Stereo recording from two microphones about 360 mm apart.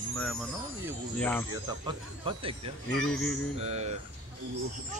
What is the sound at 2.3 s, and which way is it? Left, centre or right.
Speech, centre.